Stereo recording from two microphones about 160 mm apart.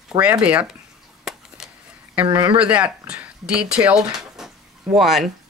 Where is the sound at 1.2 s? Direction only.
5° right (ahead or behind).